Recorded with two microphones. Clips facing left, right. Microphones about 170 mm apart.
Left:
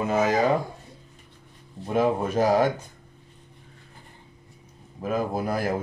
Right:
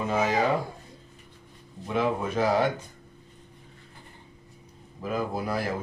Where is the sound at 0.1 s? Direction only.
45° left (ahead or behind).